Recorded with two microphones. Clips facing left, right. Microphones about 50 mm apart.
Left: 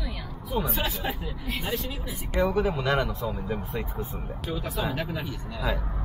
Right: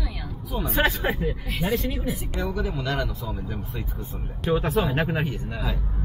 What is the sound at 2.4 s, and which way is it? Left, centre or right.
Speech, centre.